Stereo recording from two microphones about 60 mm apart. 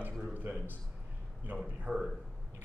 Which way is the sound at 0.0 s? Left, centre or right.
Right.